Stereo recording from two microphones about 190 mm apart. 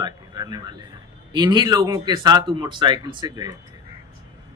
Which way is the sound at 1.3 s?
25° right (ahead or behind).